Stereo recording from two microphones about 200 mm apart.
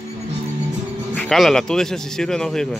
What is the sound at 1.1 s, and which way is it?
Speech, centre (ahead or behind).